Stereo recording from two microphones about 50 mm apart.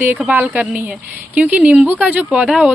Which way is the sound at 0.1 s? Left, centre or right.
Right.